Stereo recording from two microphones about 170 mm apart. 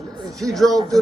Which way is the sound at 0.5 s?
Centre (ahead or behind).